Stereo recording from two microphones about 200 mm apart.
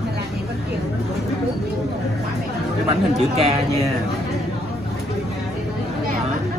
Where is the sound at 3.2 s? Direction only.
30° right (ahead or behind).